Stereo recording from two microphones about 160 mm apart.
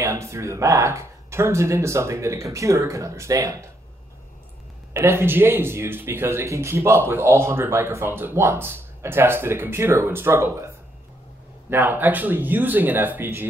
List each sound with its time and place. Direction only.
0.0 s speech: 20° right (ahead or behind)
4.9 s speech: 15° right (ahead or behind)
11.7 s speech: 10° right (ahead or behind)